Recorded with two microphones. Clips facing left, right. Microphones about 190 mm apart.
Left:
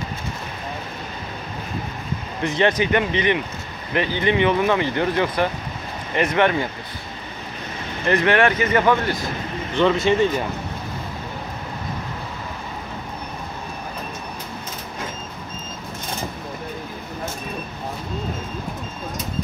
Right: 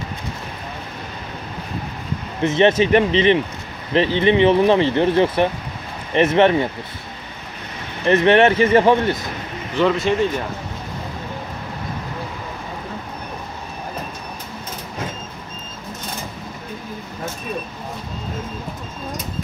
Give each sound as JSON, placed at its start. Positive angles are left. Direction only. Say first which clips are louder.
{"t": 2.4, "sound": "speech", "louder": "right 5 dB", "side_deg": -25}
{"t": 8.1, "sound": "speech", "louder": "right 4 dB", "side_deg": -25}
{"t": 9.8, "sound": "speech", "louder": "even", "side_deg": 0}